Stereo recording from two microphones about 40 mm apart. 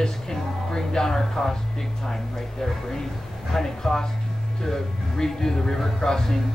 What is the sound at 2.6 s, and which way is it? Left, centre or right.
Speech, centre.